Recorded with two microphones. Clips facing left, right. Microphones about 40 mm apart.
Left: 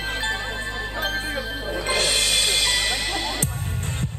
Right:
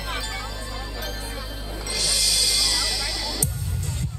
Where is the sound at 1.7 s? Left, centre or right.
Left.